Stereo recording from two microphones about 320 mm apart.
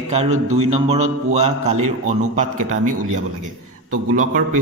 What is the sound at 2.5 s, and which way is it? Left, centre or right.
Speech, right.